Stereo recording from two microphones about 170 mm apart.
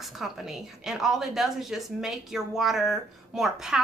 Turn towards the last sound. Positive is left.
turn(degrees=0)  # may be behind; listen again after turning